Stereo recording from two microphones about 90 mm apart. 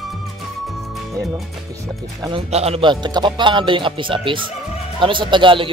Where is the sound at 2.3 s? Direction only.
65° right (ahead or behind).